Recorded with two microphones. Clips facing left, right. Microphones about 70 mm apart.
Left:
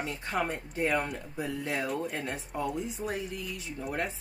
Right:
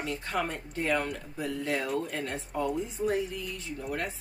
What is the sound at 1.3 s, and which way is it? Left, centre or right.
Speech, centre.